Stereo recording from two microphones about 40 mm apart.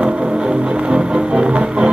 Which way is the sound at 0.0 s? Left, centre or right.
Right.